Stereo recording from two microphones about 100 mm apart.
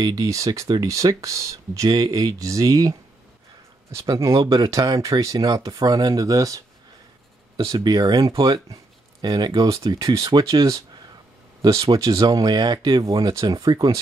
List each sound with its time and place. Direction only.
0.0 s speech: 35° right (ahead or behind)
7.6 s speech: 40° right (ahead or behind)